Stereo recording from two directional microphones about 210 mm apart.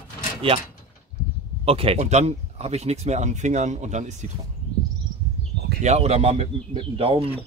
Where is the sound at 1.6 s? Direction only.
25° right (ahead or behind).